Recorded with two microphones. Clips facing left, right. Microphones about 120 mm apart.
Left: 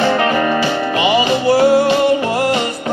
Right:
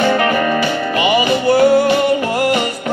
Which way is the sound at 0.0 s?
25° left (ahead or behind).